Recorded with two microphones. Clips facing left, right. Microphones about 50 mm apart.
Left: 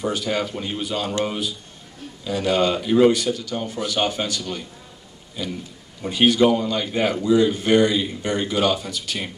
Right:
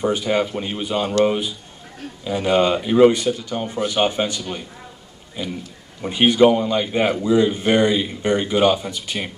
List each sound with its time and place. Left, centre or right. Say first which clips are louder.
0.0 s a man's voice: right 4 dB; right